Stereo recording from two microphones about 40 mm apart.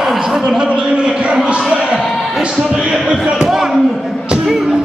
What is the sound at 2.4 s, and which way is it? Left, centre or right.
Speech, right.